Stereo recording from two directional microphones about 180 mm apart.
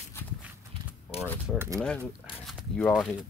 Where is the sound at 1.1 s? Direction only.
35° left (ahead or behind).